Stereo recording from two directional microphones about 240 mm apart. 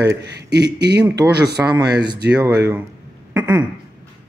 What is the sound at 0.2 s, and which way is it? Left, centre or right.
Speech, right.